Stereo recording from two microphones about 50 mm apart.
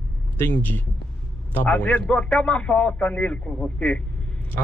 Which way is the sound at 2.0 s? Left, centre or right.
Centre.